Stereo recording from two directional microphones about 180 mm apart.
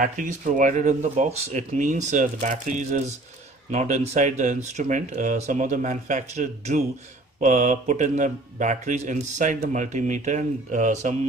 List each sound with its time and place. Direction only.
0.0 s speech: 45° right (ahead or behind)